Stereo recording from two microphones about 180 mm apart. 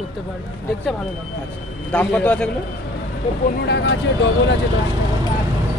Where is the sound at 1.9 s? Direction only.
10° left (ahead or behind).